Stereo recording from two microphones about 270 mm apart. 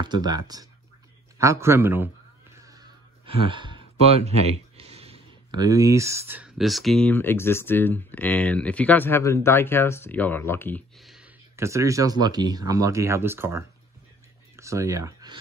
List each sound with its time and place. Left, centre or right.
0.0 s speech: centre
2.6 s a sound: centre
4.7 s speech: right; by 11.2 s centre
11.5 s speech: centre